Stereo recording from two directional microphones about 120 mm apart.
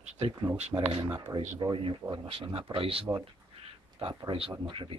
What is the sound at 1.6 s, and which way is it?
Speech, 45° right (ahead or behind).